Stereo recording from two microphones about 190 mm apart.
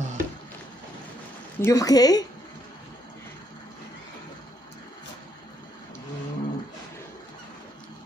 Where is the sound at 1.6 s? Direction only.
15° left (ahead or behind).